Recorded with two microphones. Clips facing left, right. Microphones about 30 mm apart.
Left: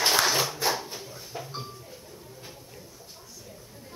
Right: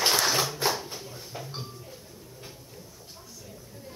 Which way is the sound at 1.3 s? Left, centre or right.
Centre.